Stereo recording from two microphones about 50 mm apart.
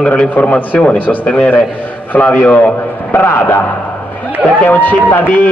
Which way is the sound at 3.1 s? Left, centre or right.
Left.